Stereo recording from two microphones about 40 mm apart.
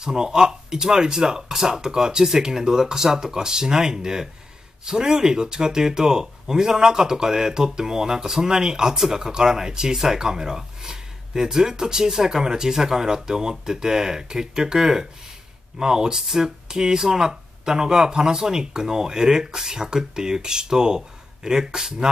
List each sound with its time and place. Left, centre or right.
0.0 s speech: centre